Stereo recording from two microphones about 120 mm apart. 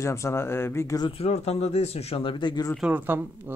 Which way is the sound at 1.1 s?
60° left (ahead or behind).